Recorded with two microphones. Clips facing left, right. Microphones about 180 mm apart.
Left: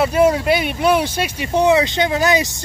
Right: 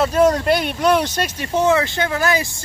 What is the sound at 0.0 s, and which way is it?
Speech, 10° left (ahead or behind).